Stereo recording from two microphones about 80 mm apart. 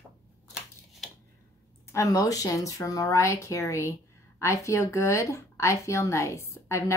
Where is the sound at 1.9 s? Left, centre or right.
Left.